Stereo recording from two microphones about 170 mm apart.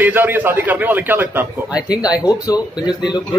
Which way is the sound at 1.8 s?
20° left (ahead or behind).